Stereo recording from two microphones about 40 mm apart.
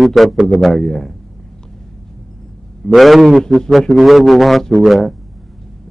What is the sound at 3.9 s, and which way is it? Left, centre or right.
A man's voice, centre.